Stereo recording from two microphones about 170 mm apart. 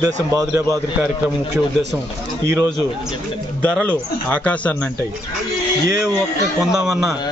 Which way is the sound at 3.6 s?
5° left (ahead or behind).